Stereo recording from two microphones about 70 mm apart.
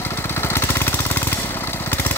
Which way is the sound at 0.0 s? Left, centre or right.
Left.